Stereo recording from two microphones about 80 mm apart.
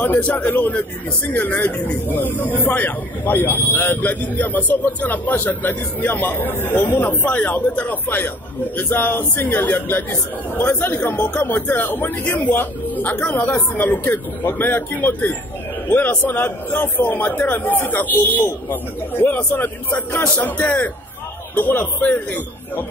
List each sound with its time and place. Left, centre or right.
0.0 s speech: centre